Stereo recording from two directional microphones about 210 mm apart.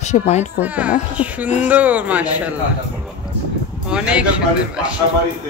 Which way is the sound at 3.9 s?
5° right (ahead or behind).